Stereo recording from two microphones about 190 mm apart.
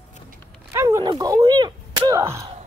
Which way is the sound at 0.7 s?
15° right (ahead or behind).